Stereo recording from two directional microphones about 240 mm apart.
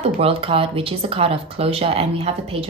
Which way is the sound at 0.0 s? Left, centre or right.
Right.